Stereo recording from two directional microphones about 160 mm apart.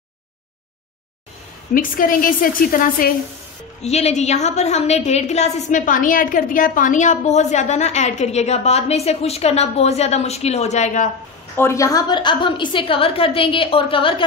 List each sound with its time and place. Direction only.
1.7 s a woman's voice: 60° left (ahead or behind)
3.8 s a woman's voice: 45° left (ahead or behind)
11.5 s a woman's voice: 15° left (ahead or behind); by 14.2 s 35° left (ahead or behind)